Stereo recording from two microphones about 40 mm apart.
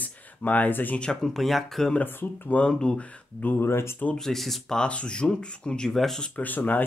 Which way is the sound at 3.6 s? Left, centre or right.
Left.